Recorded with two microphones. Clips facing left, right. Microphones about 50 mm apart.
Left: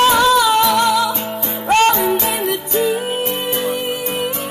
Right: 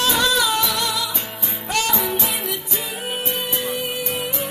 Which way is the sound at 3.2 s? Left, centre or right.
Left.